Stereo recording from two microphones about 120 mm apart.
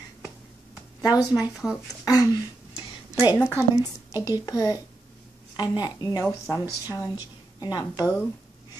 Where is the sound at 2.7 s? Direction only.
35° left (ahead or behind).